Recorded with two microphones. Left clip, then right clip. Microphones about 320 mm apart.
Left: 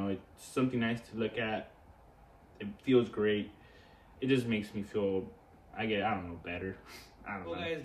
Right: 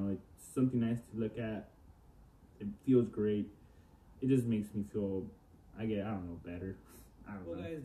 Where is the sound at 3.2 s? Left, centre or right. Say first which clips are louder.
Left 4 dB; left.